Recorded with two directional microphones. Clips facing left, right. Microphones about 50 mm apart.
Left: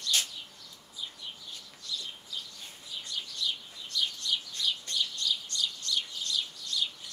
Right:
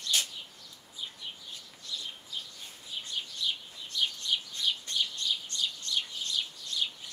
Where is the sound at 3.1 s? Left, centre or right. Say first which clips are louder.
Even; right.